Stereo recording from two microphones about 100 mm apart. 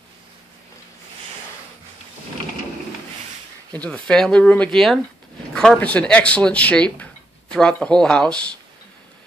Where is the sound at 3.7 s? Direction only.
15° left (ahead or behind).